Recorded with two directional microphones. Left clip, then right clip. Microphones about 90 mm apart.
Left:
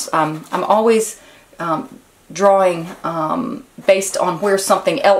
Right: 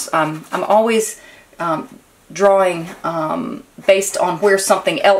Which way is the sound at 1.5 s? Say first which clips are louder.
Right 1 dB; centre (ahead or behind).